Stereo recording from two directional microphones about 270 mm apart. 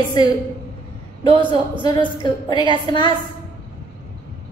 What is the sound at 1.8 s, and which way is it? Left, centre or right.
A woman's voice, centre.